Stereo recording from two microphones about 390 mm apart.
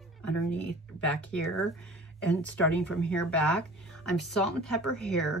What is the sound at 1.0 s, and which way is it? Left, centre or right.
Speech, centre.